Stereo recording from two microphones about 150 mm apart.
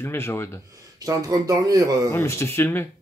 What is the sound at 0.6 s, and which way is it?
Speech, 20° right (ahead or behind).